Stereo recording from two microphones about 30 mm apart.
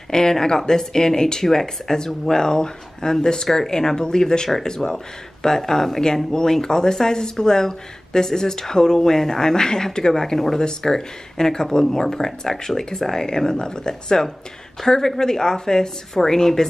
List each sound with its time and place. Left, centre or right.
0.1 s speech: left
10.3 s speech: centre